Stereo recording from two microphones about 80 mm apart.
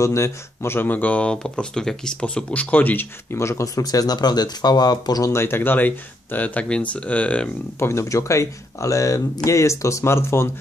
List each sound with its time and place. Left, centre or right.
0.0 s speech: left
5.3 s speech: left; by 7.5 s centre
7.8 s speech: left